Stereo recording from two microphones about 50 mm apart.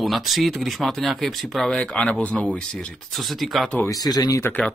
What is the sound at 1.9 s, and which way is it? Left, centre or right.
Speech, left.